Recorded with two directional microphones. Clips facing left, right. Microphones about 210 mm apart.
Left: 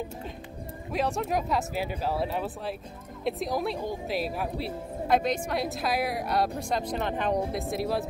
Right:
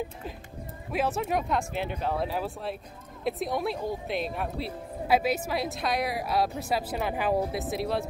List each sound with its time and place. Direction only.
0.9 s speech: centre (ahead or behind)